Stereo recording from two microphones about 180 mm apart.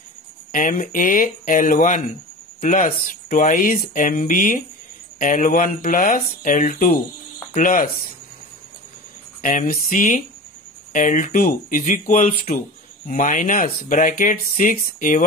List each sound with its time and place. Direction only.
0.5 s speech: 45° left (ahead or behind)
9.4 s speech: 50° left (ahead or behind)